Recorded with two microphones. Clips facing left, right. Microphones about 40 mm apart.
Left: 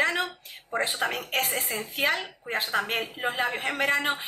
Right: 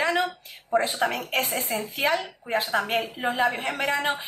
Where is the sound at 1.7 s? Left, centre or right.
Left.